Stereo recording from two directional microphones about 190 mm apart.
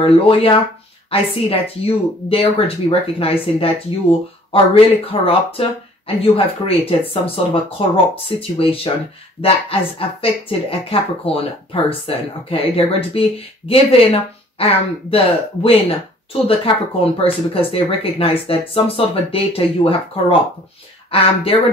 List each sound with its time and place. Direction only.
0.0 s speech: 30° left (ahead or behind)